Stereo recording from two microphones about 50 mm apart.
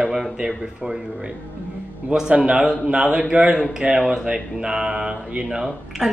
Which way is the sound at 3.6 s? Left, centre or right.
Centre.